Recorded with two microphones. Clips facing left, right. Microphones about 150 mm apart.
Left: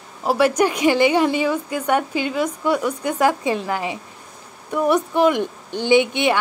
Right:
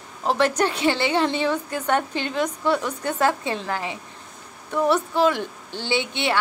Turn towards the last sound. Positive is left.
turn(degrees=15)  # may be behind; listen again after turning